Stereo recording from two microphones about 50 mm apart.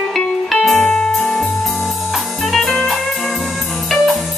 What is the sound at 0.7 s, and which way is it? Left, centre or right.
Music, left.